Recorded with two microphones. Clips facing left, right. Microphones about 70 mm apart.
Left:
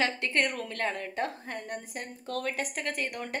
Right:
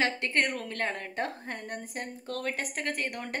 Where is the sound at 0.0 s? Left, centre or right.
Right.